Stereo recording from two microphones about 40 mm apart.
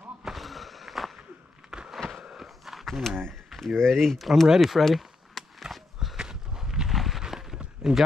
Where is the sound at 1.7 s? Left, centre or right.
Centre.